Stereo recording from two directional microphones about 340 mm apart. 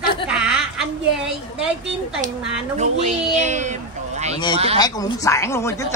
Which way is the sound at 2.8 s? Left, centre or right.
Centre.